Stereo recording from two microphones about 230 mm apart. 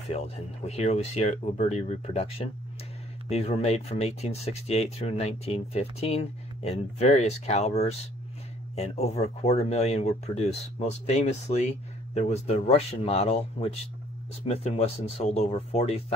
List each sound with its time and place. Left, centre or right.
0.7 s speech: left